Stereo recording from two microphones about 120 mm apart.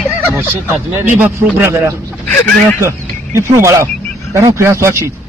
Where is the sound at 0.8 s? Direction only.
20° right (ahead or behind).